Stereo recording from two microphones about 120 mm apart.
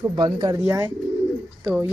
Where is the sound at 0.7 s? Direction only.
25° right (ahead or behind).